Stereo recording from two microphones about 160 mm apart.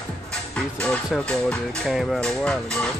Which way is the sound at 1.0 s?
5° left (ahead or behind).